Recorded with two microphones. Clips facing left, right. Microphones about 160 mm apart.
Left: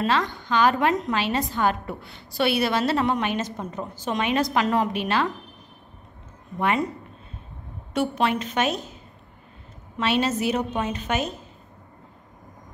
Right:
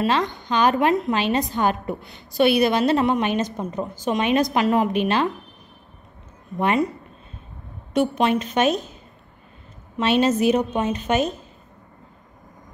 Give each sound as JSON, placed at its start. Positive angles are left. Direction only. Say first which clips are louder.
{"t": 0.0, "sound": "a woman's voice", "louder": "right 2 dB", "side_deg": -20}
{"t": 7.9, "sound": "a woman's voice", "louder": "right 4 dB", "side_deg": -20}
{"t": 10.2, "sound": "a woman's voice", "louder": "right 6 dB", "side_deg": -20}